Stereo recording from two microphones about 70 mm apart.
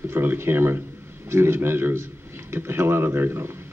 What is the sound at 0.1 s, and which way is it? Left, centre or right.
A man's voice, right.